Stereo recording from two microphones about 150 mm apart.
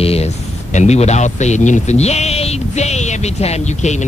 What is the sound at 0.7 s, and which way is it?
Speech, 50° left (ahead or behind).